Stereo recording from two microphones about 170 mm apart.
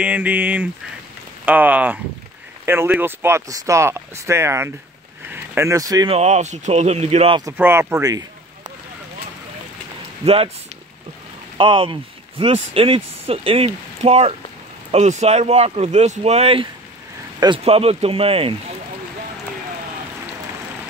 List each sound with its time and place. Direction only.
0.0 s speech: 10° right (ahead or behind)
6.0 s speech: 40° right (ahead or behind)
7.5 s speech: 10° right (ahead or behind)
10.2 s speech: 35° right (ahead or behind)
11.5 s speech: 30° right (ahead or behind)